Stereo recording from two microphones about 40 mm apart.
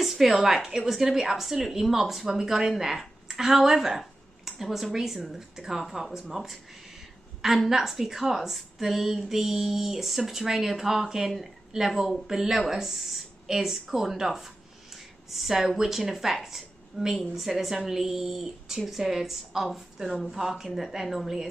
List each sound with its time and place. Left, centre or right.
0.0 s a woman's voice: centre